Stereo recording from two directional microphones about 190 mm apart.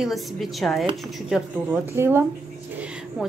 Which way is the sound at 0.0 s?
Centre (ahead or behind).